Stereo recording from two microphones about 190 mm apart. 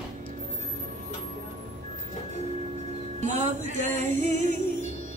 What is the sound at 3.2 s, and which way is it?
Music, 40° right (ahead or behind).